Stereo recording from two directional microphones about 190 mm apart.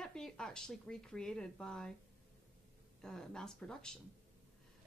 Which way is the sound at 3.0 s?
5° left (ahead or behind).